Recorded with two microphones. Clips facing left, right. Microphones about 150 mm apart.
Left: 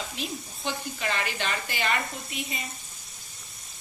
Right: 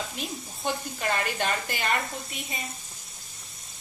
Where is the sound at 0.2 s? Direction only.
50° right (ahead or behind).